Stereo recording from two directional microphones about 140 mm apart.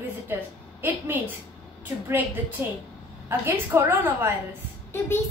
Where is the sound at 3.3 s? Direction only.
15° right (ahead or behind).